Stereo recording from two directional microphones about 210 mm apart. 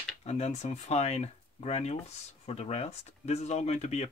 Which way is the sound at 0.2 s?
30° left (ahead or behind).